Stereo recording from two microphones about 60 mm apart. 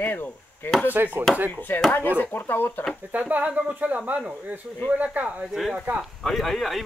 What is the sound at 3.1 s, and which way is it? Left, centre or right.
Speech, right.